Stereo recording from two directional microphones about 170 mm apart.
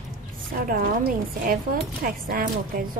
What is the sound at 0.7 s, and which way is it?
A woman's voice, 55° right (ahead or behind).